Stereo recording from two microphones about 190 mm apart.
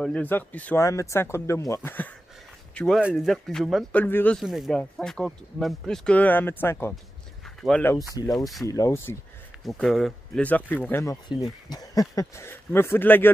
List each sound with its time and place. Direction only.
0.0 s speech: 5° left (ahead or behind)
9.7 s speech: centre (ahead or behind)